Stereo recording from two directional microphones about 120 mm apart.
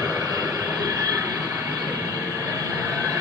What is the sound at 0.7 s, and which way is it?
Train, 30° right (ahead or behind).